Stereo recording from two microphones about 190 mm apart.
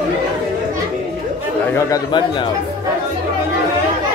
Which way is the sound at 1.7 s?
15° left (ahead or behind).